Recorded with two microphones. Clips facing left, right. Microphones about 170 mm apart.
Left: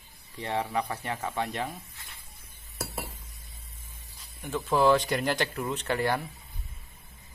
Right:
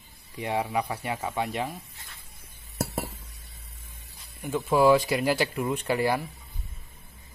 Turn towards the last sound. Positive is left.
turn(degrees=-10)  # may be behind; listen again after turning